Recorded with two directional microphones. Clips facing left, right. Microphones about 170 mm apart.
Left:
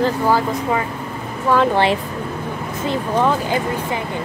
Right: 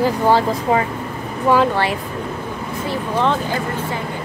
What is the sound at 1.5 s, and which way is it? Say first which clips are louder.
Speech: right 2 dB; 15° right (ahead or behind).